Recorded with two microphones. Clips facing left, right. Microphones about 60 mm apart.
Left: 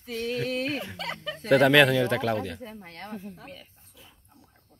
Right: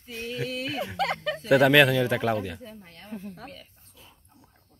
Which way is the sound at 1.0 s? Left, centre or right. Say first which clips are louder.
Right 6 dB; right.